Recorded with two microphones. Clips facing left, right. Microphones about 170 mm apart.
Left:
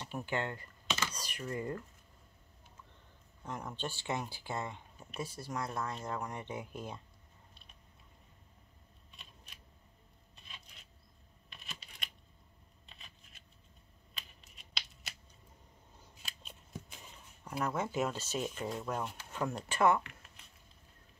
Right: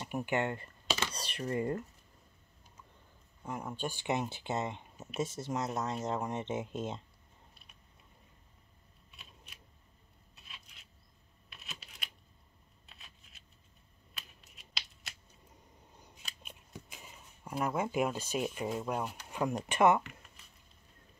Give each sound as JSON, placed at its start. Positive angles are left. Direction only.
{"t": 0.0, "sound": "speech", "side_deg": -15}
{"t": 3.4, "sound": "speech", "side_deg": -10}
{"t": 9.1, "sound": "a sound", "side_deg": -5}
{"t": 14.1, "sound": "finger snapping", "side_deg": -5}
{"t": 16.4, "sound": "speech", "side_deg": -10}